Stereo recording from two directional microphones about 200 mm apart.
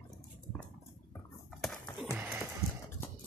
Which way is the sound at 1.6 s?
Centre (ahead or behind).